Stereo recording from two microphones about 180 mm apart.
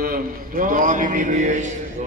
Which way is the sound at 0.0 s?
50° right (ahead or behind).